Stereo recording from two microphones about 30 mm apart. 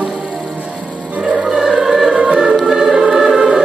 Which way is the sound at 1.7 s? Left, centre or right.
Centre.